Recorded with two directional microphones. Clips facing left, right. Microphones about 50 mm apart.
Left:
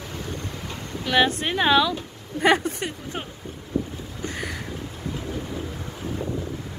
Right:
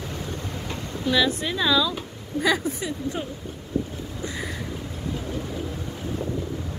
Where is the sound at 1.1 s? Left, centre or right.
Left.